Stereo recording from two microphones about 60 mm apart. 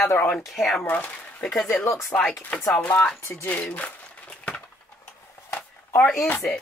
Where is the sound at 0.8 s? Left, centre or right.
Left.